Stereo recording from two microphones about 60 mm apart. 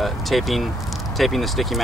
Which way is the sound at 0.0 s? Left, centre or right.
Centre.